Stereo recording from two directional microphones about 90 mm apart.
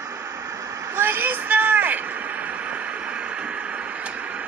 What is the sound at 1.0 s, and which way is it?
Vehicle, 20° right (ahead or behind).